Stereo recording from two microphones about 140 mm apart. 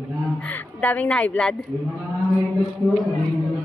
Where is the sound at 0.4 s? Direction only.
10° left (ahead or behind).